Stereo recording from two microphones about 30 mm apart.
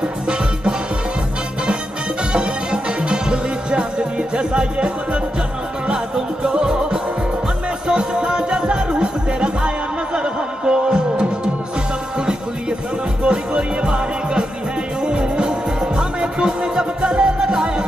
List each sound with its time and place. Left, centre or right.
2.3 s music: right
13.2 s music: right
17.5 s music: right